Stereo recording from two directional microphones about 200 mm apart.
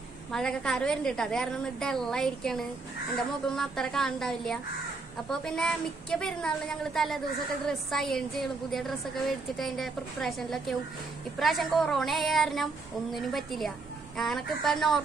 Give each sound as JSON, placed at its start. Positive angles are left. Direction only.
{"t": 0.3, "sound": "a woman's voice", "side_deg": 5}